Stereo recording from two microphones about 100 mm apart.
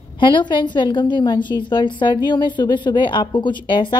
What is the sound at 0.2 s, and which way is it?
Speech, 50° left (ahead or behind).